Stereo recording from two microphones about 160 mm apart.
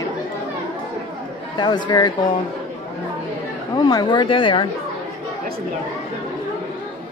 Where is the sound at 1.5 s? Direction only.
30° left (ahead or behind).